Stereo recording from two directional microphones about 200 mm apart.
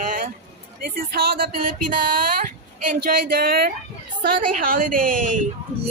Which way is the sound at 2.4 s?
45° right (ahead or behind).